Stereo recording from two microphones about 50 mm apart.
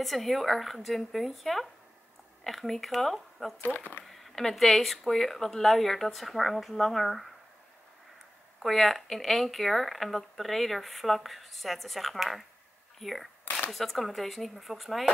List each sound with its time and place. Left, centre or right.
0.0 s speech: centre
3.6 s speech: left
4.0 s speech: centre
8.6 s speech: centre